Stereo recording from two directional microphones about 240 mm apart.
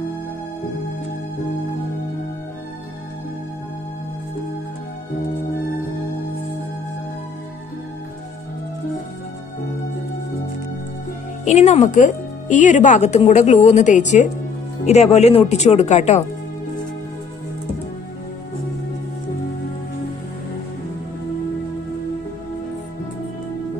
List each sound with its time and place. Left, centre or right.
11.4 s speech: left